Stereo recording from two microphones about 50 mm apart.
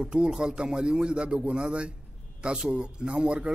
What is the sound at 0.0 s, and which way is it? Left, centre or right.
A man's voice, centre.